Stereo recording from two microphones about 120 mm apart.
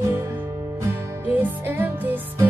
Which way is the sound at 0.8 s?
15° right (ahead or behind).